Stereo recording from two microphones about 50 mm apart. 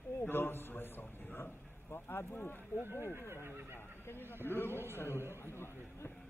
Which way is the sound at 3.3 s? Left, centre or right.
Right.